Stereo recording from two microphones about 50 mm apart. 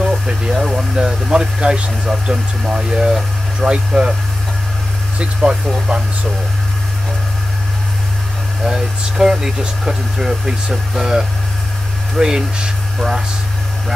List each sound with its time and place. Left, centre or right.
0.0 s a sound: centre
0.6 s speech: centre
5.2 s speech: centre
8.6 s speech: centre